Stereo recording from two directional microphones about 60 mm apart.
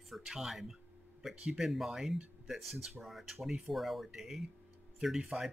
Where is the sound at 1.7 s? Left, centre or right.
Centre.